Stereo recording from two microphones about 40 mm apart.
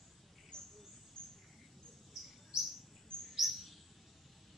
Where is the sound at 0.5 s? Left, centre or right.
Centre.